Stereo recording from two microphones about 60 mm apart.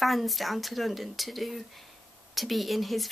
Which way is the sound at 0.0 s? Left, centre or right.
Centre.